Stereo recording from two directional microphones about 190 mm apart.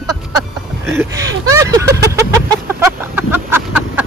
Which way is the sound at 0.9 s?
15° right (ahead or behind).